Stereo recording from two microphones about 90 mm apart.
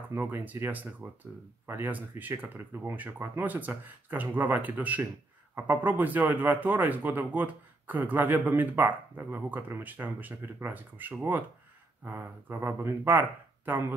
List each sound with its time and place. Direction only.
0.1 s speech: 25° right (ahead or behind)